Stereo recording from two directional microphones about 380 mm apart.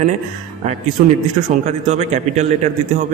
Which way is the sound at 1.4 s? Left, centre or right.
Centre.